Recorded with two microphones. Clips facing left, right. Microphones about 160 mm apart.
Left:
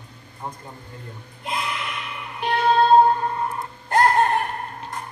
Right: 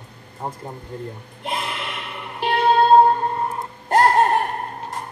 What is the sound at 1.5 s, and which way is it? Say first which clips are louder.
Music: left 2 dB; 30° right (ahead or behind).